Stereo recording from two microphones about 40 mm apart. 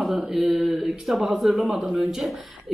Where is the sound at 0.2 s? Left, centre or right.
Centre.